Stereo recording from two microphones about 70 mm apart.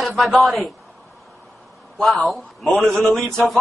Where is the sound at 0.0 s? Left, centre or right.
Centre.